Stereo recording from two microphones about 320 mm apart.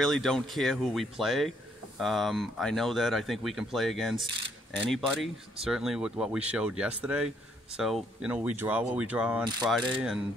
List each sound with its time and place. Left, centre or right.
0.0 s speech: centre